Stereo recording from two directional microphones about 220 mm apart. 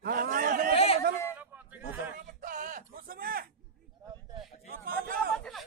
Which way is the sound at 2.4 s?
35° right (ahead or behind).